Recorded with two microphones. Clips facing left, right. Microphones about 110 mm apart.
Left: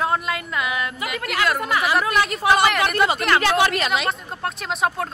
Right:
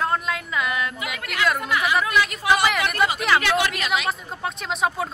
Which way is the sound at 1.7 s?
35° left (ahead or behind).